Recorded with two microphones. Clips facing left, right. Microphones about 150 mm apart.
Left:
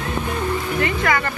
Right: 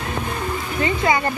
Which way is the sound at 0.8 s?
20° right (ahead or behind).